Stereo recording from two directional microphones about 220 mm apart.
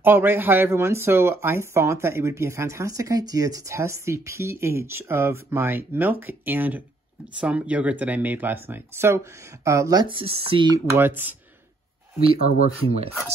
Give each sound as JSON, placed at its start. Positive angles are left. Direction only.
{"t": 0.0, "sound": "speech", "side_deg": -10}
{"t": 12.4, "sound": "speech", "side_deg": 40}